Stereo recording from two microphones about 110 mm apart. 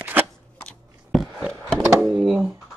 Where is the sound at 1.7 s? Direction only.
25° right (ahead or behind).